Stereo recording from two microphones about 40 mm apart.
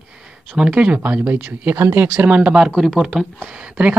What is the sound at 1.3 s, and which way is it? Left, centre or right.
Speech, right.